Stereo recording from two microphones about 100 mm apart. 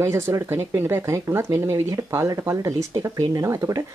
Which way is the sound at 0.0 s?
25° right (ahead or behind).